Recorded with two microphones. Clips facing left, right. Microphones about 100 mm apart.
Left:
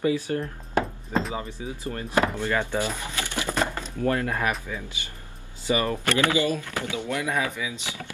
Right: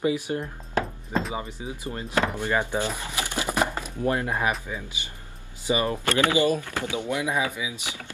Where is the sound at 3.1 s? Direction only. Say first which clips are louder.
Right 1 dB; 20° right (ahead or behind).